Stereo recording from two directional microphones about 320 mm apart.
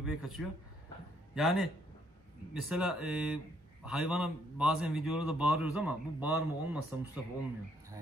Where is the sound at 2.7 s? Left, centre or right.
Centre.